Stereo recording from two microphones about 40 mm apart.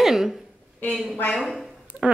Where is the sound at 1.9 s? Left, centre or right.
Right.